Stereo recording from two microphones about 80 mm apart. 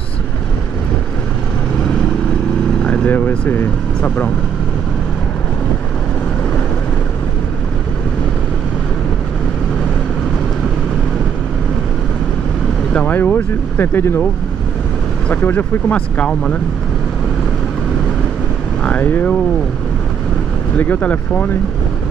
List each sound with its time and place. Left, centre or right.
2.8 s speech: centre
12.9 s speech: left
15.4 s speech: left
18.9 s speech: centre
20.7 s speech: centre